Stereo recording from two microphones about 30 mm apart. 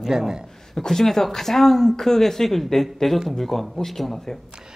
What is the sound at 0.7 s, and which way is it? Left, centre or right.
A woman's voice, centre.